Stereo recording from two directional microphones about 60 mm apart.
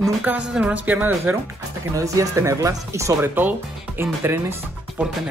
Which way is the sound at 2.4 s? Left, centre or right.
Right.